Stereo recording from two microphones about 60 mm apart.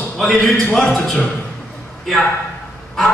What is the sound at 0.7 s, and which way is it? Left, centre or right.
Speech, centre.